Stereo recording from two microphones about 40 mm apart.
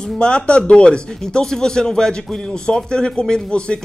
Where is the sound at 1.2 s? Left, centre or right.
Centre.